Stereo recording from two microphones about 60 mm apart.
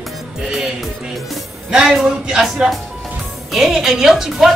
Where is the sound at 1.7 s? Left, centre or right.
Centre.